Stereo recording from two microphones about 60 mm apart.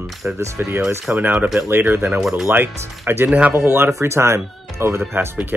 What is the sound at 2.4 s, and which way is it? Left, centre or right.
Speech, right.